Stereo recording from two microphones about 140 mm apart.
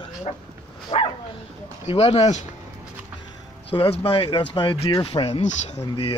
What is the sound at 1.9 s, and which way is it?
Speech, 45° left (ahead or behind).